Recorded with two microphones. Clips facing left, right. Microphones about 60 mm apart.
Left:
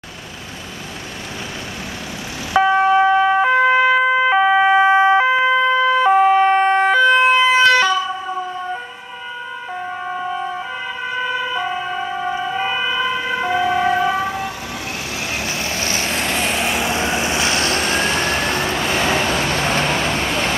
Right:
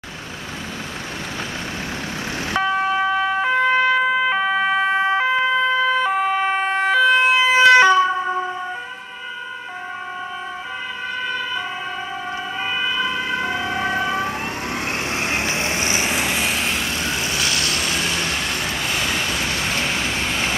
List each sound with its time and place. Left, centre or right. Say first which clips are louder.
2.6 s emergency vehicle: left 7 dB; centre
7.9 s emergency vehicle: right 4 dB; right
11.1 s emergency vehicle: left 4 dB; centre
13.2 s emergency vehicle: left 4 dB; centre
14.1 s vehicle: left 2 dB; right; by 16.8 s centre
16.8 s vehicle: left 5 dB; left